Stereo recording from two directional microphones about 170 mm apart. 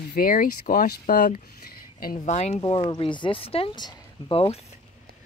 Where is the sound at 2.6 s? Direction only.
30° left (ahead or behind).